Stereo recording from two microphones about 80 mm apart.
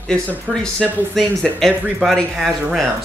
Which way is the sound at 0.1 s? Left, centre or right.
Centre.